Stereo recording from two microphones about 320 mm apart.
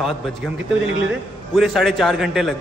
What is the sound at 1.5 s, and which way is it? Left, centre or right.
A man's voice, centre.